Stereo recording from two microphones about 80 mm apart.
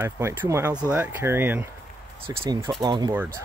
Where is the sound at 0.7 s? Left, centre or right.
Centre.